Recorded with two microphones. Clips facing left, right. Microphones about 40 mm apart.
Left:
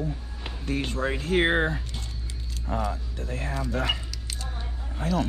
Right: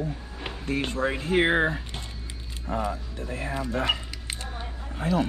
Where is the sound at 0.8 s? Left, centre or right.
Right.